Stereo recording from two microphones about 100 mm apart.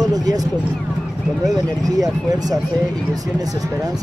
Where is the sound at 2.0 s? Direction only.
40° right (ahead or behind).